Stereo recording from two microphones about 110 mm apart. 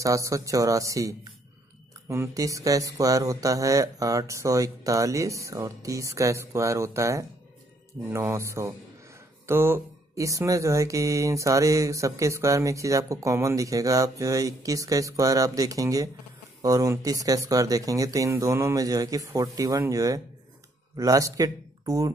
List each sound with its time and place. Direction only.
0.0 s speech: 30° right (ahead or behind)